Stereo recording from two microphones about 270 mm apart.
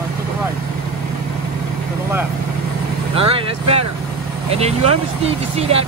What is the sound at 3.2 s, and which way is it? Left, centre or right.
Vehicle, right.